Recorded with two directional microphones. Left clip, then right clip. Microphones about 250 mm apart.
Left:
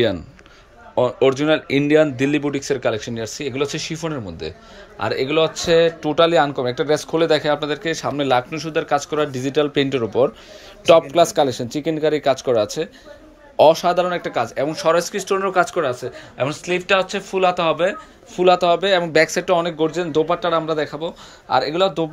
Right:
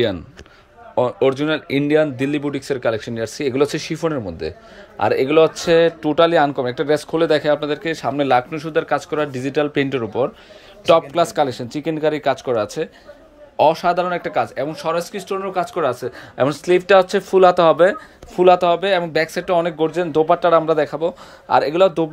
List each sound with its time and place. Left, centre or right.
0.9 s speech: centre
16.3 s speech: right